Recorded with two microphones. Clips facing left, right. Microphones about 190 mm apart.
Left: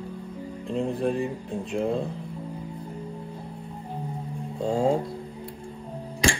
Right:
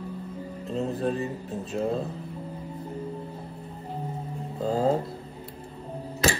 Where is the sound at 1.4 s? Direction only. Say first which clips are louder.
Left 1 dB; 5° right (ahead or behind).